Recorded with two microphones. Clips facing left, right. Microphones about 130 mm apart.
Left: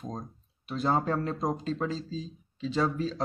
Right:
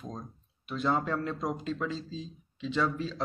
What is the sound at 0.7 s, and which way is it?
Speech, 35° left (ahead or behind).